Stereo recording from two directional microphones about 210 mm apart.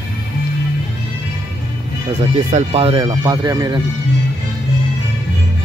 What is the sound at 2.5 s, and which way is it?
Speech, 30° right (ahead or behind).